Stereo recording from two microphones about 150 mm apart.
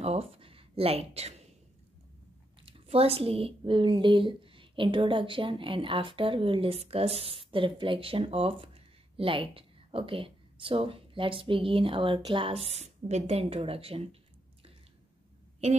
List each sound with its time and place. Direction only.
0.0 s speech: 40° right (ahead or behind)
2.6 s a woman's voice: 40° right (ahead or behind)